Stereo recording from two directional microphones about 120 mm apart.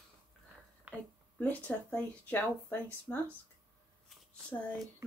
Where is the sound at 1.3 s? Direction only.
15° left (ahead or behind).